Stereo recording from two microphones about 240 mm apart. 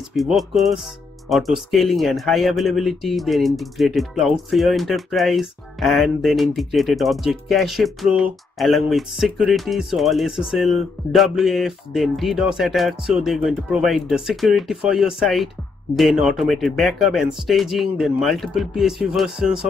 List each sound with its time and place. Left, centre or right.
0.1 s speech: centre